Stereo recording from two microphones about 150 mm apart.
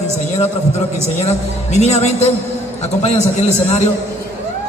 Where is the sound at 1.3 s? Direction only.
50° left (ahead or behind).